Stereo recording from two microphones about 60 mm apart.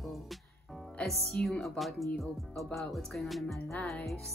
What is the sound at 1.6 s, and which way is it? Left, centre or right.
Speech, centre.